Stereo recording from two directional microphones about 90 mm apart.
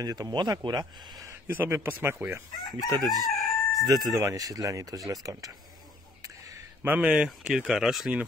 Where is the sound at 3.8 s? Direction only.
45° right (ahead or behind).